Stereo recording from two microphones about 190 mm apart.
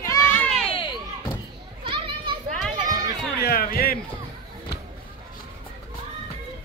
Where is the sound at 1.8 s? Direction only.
25° right (ahead or behind).